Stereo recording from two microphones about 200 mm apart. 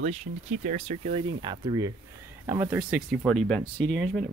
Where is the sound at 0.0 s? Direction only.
35° right (ahead or behind).